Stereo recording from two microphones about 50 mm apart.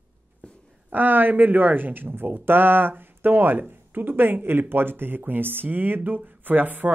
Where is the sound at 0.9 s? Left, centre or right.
Right.